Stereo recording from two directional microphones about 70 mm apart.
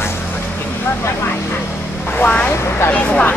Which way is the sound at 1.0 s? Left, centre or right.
Left.